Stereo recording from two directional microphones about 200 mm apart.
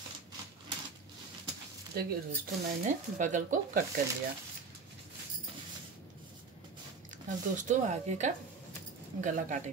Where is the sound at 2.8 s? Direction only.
40° right (ahead or behind).